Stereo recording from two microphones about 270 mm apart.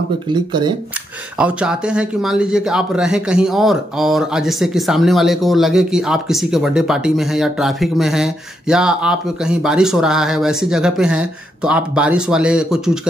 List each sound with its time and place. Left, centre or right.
0.3 s speech: centre
1.4 s speech: centre